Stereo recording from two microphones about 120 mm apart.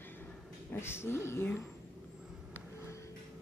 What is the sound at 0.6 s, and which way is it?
Speech, 20° left (ahead or behind).